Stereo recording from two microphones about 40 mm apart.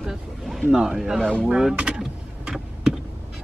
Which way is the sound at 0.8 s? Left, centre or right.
Centre.